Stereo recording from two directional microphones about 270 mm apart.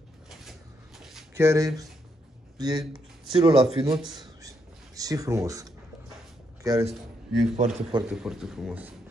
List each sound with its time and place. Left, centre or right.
0.3 s a sound: centre
2.5 s a man's voice: centre
7.5 s a man's voice: right
8.1 s speech: centre